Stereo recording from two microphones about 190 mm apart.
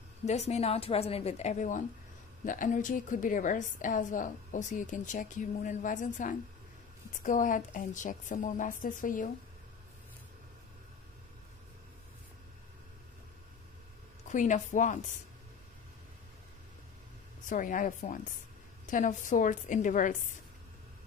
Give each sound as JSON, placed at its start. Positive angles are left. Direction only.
{"t": 0.2, "sound": "a woman's voice", "side_deg": 35}
{"t": 14.2, "sound": "a woman's voice", "side_deg": 40}
{"t": 17.5, "sound": "a woman's voice", "side_deg": 45}